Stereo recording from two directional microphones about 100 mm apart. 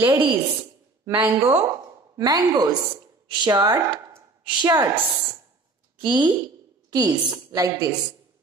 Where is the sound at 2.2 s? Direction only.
40° right (ahead or behind).